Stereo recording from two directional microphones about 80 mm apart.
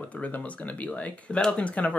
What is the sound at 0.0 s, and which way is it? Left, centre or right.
Speech, centre.